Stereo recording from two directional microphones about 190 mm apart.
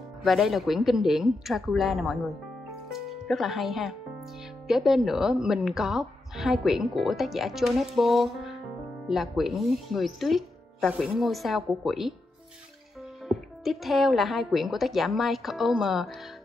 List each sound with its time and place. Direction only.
0.2 s speech: centre (ahead or behind)
13.7 s speech: centre (ahead or behind)